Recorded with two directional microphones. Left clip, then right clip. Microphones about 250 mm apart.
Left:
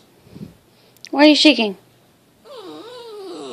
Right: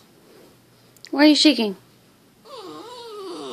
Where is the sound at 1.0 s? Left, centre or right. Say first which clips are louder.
Left 4 dB; centre.